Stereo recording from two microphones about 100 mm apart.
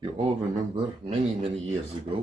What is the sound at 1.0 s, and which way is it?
Speech, 80° right.